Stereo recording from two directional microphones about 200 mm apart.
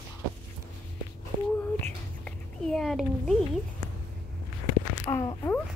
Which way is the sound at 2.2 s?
5° left (ahead or behind).